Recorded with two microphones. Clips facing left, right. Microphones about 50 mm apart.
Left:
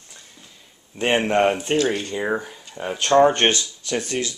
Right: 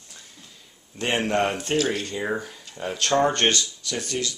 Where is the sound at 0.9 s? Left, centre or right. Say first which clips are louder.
Left 4 dB; left.